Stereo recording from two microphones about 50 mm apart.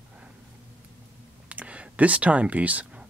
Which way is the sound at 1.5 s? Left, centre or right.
Right.